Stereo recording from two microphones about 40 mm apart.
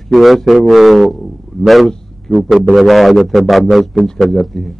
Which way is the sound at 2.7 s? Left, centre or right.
Centre.